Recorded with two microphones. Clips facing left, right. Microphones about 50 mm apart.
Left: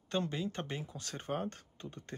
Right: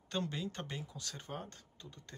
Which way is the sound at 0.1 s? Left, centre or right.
Centre.